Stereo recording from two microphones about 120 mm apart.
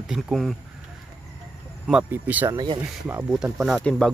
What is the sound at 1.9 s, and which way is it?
Speech, 10° right (ahead or behind).